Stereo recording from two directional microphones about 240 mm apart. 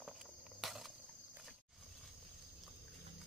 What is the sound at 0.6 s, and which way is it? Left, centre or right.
Cricket, centre.